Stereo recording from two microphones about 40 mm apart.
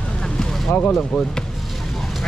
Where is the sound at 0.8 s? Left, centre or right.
Left.